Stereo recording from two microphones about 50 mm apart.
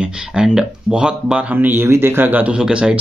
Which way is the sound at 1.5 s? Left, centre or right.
Right.